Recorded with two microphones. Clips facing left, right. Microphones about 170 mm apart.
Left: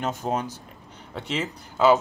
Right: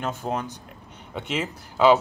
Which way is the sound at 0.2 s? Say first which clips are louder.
Left 1 dB; 5° left (ahead or behind).